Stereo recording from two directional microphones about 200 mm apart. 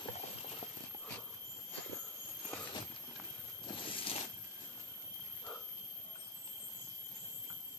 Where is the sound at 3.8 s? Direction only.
25° left (ahead or behind).